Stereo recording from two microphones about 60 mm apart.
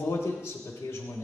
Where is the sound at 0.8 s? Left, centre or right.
Left.